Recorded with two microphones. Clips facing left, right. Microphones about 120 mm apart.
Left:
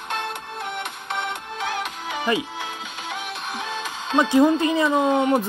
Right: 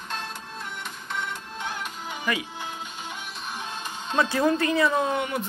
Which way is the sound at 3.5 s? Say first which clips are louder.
Left 4 dB; 90° left.